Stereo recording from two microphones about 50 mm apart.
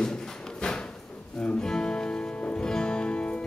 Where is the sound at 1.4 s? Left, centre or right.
Centre.